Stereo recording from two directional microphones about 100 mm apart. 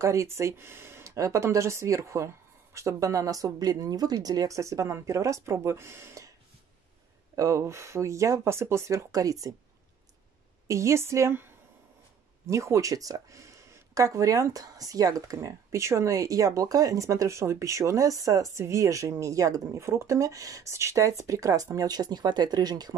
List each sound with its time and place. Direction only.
0.0 s speech: 30° right (ahead or behind)
7.3 s speech: 30° right (ahead or behind)
10.7 s speech: 30° right (ahead or behind)